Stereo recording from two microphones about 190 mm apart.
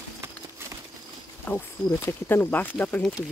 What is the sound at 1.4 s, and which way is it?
Speech, 10° left (ahead or behind).